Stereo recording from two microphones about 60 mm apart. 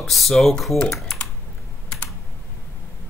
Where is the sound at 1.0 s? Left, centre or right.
Centre.